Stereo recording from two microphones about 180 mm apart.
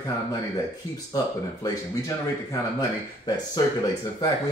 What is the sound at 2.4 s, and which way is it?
Speech, 20° left (ahead or behind).